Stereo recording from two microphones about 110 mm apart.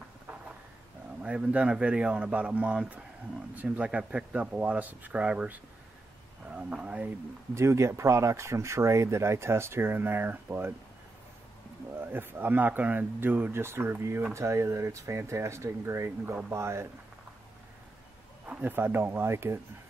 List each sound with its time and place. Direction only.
1.2 s speech: 10° right (ahead or behind)
7.5 s speech: 25° right (ahead or behind)
11.9 s speech: 20° right (ahead or behind)
18.5 s speech: 15° right (ahead or behind)